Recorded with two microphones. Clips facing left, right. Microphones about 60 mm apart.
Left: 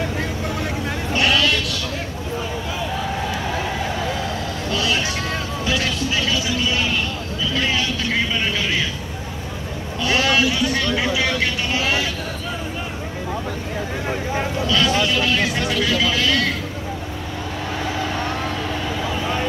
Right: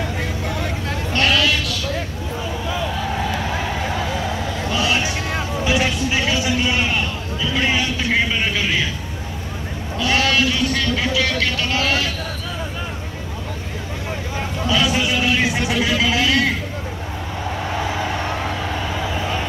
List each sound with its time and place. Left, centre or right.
1.1 s sheep: centre
4.7 s a sound: centre
7.5 s vehicle: right
10.0 s sheep: centre
14.7 s vehicle: centre